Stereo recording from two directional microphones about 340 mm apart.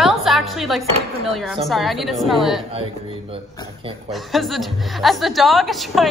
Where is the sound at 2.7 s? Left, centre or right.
Centre.